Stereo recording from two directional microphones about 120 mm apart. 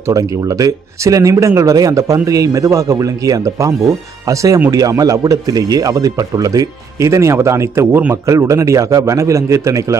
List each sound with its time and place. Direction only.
0.1 s speech: 30° right (ahead or behind)